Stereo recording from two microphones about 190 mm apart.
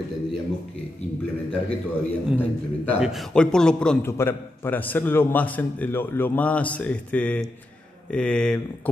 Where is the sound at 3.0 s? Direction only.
Centre (ahead or behind).